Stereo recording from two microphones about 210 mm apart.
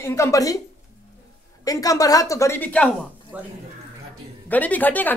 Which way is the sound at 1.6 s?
15° left (ahead or behind).